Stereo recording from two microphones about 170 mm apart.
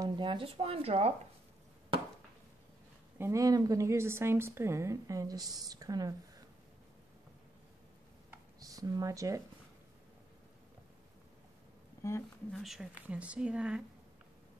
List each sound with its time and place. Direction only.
0.0 s speech: 25° right (ahead or behind)
3.2 s a woman's voice: 20° right (ahead or behind)
8.3 s a sound: 20° right (ahead or behind)
12.0 s speech: 15° left (ahead or behind)
12.5 s speech: centre (ahead or behind)